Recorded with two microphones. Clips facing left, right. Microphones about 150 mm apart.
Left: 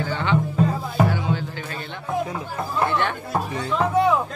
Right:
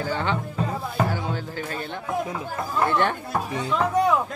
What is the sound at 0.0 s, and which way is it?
Music, 40° right (ahead or behind).